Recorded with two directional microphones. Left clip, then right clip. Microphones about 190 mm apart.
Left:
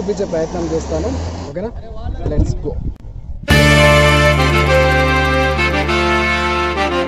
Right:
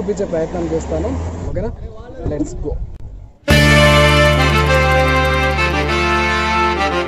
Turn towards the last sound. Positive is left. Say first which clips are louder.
# right 1 dB
turn(degrees=0)  # may be behind; listen again after turning